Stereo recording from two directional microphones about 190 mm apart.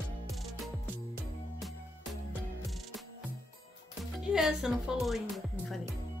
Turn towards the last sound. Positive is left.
turn(degrees=0)  # may be behind; listen again after turning